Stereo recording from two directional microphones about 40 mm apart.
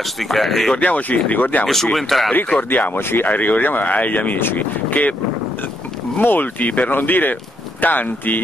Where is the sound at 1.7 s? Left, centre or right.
Centre.